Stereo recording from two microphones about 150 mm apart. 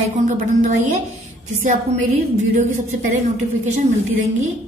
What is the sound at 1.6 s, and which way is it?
Speech, 55° right (ahead or behind).